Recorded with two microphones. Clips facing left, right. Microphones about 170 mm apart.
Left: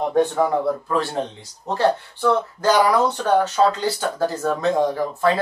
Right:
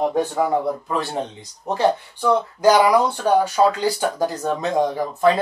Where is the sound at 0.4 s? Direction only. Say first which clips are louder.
Left 1 dB; 15° right (ahead or behind).